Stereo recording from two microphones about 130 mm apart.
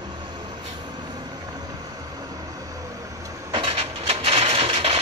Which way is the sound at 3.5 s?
45° right (ahead or behind).